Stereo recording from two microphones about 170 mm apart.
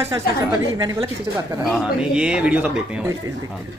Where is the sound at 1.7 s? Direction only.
5° right (ahead or behind).